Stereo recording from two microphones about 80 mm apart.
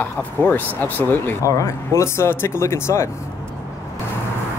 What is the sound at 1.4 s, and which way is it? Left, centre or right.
Speech, left.